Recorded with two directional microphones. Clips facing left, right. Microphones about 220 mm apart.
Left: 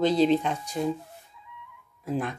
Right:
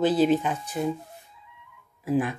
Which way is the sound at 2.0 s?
5° right (ahead or behind).